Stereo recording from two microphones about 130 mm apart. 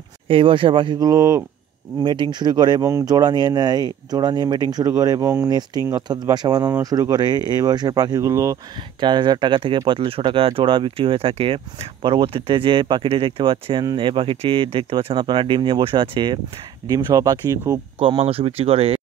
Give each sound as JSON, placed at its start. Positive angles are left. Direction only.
{"t": 0.3, "sound": "speech", "side_deg": -40}
{"t": 2.8, "sound": "speech", "side_deg": -25}
{"t": 5.5, "sound": "speech", "side_deg": -30}
{"t": 9.0, "sound": "speech", "side_deg": -35}
{"t": 16.8, "sound": "speech", "side_deg": -25}
{"t": 17.9, "sound": "speech", "side_deg": -45}